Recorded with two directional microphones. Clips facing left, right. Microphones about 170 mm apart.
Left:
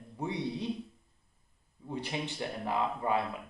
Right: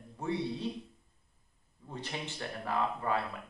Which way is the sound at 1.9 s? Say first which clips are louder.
Left 4 dB; 15° left (ahead or behind).